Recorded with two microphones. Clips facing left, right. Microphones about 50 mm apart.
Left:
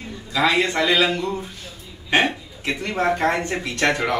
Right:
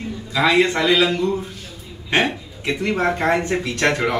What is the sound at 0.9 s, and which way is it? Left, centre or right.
Speech, centre.